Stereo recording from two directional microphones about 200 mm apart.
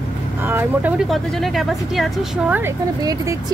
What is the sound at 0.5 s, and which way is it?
Speech, 10° right (ahead or behind).